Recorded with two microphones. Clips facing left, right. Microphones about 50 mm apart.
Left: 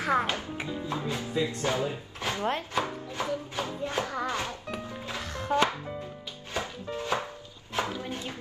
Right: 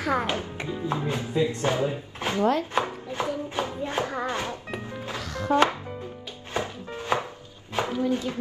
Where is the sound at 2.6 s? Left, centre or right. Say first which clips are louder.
Right 4 dB; right.